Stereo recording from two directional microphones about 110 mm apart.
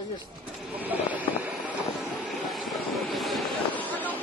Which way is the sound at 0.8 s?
15° right (ahead or behind).